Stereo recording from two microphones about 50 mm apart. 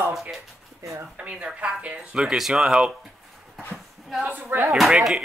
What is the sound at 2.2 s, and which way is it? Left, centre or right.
Speech, centre.